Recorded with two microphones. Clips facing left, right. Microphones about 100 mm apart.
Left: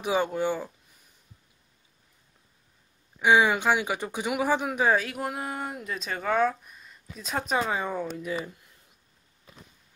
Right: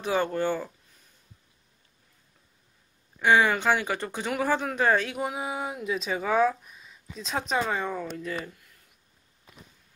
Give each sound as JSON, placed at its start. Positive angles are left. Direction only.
{"t": 0.0, "sound": "speech", "side_deg": 10}
{"t": 3.2, "sound": "speech", "side_deg": 15}
{"t": 8.5, "sound": "a sound", "side_deg": 20}